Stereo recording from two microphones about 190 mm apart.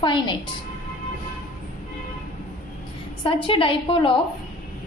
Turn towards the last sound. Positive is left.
turn(degrees=25)  # may be behind; listen again after turning